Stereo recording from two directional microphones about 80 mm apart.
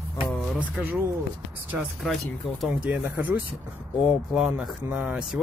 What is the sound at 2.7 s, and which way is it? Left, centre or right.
Speech, centre.